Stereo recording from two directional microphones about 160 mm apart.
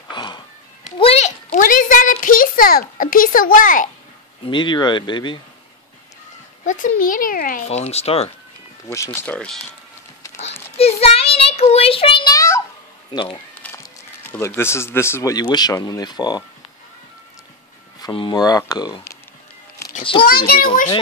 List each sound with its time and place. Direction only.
0.1 s music: 30° left (ahead or behind)
0.9 s a sound: 40° left (ahead or behind); by 3.9 s 55° left (ahead or behind)
4.5 s speech: 30° left (ahead or behind)
6.6 s a child's voice: 55° left (ahead or behind)
7.6 s speech: 40° left (ahead or behind)
8.8 s speech: 15° left (ahead or behind)
10.8 s a child's voice: 40° left (ahead or behind)
12.4 s a sound: 15° left (ahead or behind)
13.1 s speech: 30° left (ahead or behind)
13.6 s music: 10° left (ahead or behind)
14.2 s speech: 15° left (ahead or behind)
18.0 s speech: 30° left (ahead or behind)
20.0 s speech: 30° left (ahead or behind)
20.2 s a child's voice: 70° left (ahead or behind)